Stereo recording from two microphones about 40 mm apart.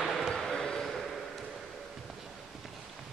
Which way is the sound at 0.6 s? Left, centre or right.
Centre.